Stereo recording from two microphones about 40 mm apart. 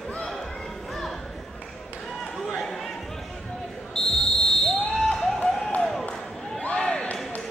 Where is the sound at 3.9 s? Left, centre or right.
Centre.